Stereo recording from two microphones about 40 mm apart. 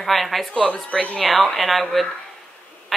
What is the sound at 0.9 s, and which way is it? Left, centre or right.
Speech, left.